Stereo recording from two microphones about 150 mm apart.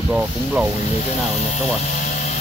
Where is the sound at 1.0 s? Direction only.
45° left (ahead or behind).